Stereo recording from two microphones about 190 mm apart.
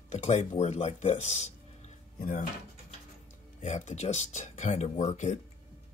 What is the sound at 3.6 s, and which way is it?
Speech, 40° left (ahead or behind).